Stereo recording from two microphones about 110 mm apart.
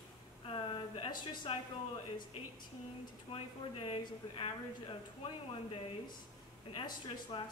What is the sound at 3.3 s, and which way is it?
Speech, 55° left (ahead or behind).